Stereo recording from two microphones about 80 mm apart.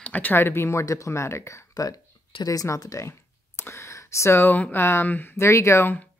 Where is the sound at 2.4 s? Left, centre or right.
Left.